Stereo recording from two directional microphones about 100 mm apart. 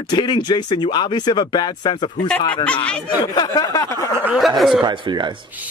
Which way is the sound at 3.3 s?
40° left (ahead or behind).